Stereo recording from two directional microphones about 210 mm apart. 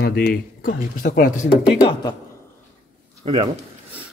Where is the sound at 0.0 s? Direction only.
50° left (ahead or behind).